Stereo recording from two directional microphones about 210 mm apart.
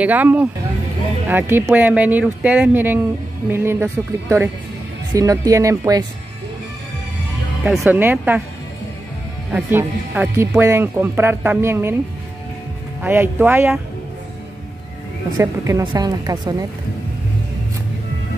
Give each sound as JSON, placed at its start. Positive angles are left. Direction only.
{"t": 0.0, "sound": "speech", "side_deg": -5}
{"t": 7.6, "sound": "speech", "side_deg": -5}
{"t": 9.5, "sound": "speech", "side_deg": -10}
{"t": 13.0, "sound": "speech", "side_deg": -10}
{"t": 15.3, "sound": "speech", "side_deg": -15}